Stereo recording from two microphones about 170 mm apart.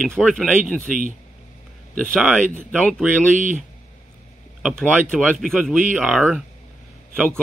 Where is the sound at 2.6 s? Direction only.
Centre (ahead or behind).